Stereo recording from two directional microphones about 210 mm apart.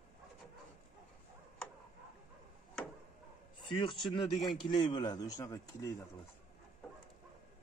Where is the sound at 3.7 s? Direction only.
25° left (ahead or behind).